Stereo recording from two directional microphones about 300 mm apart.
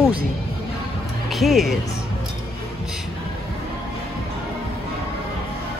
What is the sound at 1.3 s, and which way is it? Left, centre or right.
Speech, centre.